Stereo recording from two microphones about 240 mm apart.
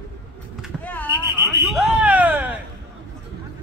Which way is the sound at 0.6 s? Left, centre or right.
Centre.